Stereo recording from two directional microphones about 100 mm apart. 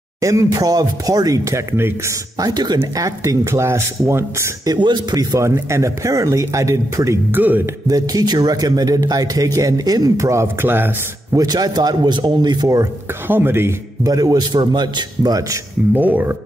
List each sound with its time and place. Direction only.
0.2 s speech: 30° right (ahead or behind)
2.3 s speech: 40° right (ahead or behind)
3.0 s speech: 30° right (ahead or behind)
4.6 s speech: 45° right (ahead or behind)
7.3 s speech: 20° right (ahead or behind)
7.9 s speech: 40° right (ahead or behind); by 10.9 s 20° right (ahead or behind)
11.3 s speech: 40° right (ahead or behind)
13.3 s speech: 20° right (ahead or behind)
14.0 s speech: 40° right (ahead or behind)
15.9 s speech: 15° right (ahead or behind)